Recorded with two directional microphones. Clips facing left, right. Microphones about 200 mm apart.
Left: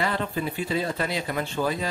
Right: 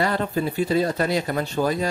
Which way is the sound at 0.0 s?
40° right (ahead or behind).